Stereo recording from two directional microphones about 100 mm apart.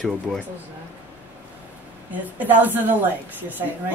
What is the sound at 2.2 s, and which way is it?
Speech, 15° right (ahead or behind).